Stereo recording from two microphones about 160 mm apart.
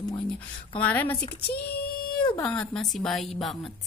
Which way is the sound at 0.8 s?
10° left (ahead or behind).